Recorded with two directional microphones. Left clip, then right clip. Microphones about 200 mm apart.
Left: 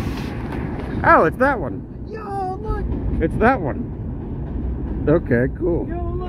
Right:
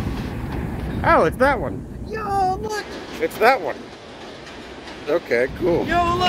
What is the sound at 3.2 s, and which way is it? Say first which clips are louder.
Speech: right 1 dB; 15° right (ahead or behind).